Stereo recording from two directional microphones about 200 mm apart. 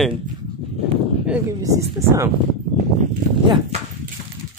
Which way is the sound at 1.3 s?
15° right (ahead or behind).